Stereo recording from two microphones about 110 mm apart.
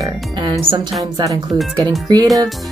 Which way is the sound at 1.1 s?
35° right (ahead or behind).